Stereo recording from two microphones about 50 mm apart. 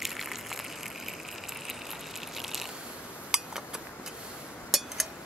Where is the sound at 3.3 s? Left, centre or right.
Centre.